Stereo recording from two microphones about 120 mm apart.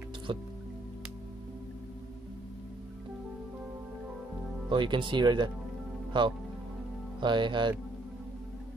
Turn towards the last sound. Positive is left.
turn(degrees=-40)  # may be behind; listen again after turning